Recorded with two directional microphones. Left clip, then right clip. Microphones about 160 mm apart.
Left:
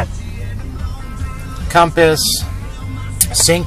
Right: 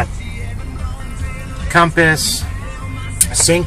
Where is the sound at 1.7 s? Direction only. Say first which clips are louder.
Left 1 dB; 55° left (ahead or behind).